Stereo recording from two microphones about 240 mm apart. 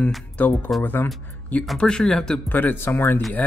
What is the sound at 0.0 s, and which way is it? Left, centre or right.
Speech, centre.